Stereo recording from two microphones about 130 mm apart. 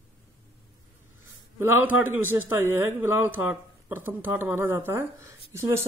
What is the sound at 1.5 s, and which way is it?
A man's voice, 15° right (ahead or behind).